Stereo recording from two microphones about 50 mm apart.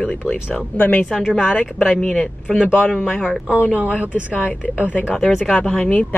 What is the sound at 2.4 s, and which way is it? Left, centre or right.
Speech, right.